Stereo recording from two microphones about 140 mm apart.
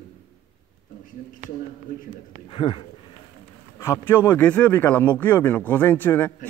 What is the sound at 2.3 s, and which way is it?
Speech, 35° left (ahead or behind).